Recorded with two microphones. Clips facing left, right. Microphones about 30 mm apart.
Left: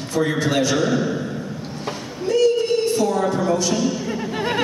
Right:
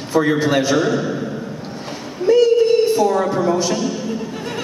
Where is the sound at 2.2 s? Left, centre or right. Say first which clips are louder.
Right 5 dB; centre.